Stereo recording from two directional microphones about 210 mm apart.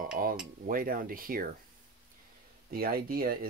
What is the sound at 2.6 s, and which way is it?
Speech, 45° right (ahead or behind).